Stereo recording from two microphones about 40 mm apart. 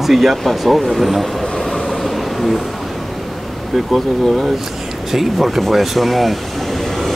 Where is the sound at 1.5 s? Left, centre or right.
Centre.